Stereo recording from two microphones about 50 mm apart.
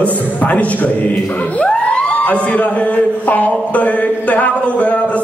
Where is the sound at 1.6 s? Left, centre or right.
Left.